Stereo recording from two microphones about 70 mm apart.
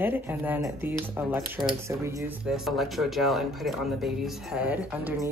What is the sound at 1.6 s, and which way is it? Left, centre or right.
Speech, right.